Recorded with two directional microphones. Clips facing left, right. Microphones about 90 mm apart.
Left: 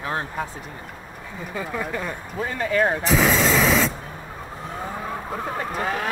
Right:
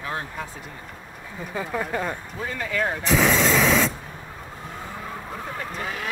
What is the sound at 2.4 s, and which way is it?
Speech, 40° left (ahead or behind).